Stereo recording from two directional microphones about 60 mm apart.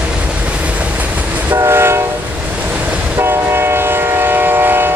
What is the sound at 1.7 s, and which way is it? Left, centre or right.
Train, right.